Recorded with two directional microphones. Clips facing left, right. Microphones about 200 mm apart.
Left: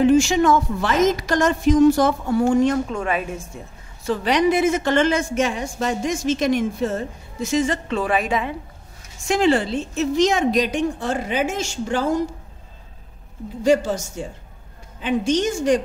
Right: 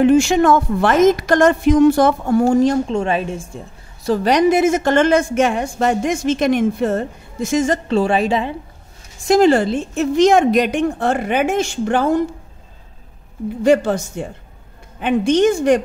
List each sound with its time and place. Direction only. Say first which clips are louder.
0.0 s a woman's voice: right 3 dB; 55° right (ahead or behind)
2.4 s a woman's voice: right 2 dB; 35° right (ahead or behind)
4.0 s a woman's voice: right 4 dB; 40° right (ahead or behind); by 12.2 s 60° right (ahead or behind)
13.7 s a woman's voice: right 3 dB; 60° right (ahead or behind)